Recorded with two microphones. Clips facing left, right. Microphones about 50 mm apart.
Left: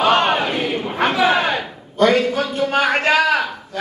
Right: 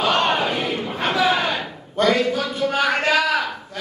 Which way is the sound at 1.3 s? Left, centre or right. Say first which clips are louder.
Left 3 dB; left.